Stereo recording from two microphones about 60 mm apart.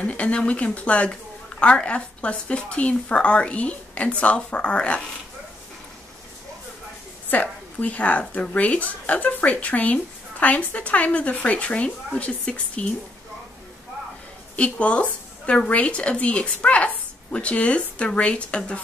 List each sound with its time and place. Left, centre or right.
0.0 s a woman's voice: left
7.2 s a woman's voice: left
14.6 s a woman's voice: left